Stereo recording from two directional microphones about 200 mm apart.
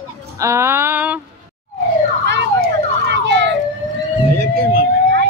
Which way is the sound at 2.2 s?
60° right (ahead or behind).